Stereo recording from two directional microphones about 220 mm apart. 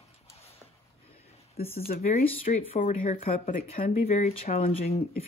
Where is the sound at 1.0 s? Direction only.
25° left (ahead or behind).